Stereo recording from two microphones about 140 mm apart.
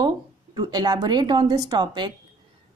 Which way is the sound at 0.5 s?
30° right (ahead or behind).